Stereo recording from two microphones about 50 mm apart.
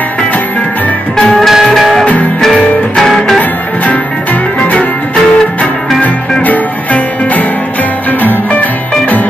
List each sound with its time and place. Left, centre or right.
1.5 s music: centre
3.3 s music: left
6.4 s music: left